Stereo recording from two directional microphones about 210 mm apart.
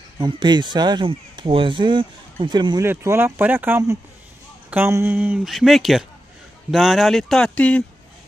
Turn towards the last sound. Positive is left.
turn(degrees=5)  # may be behind; listen again after turning